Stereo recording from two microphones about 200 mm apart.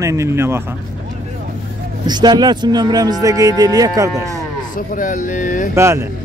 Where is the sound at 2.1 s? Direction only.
20° right (ahead or behind).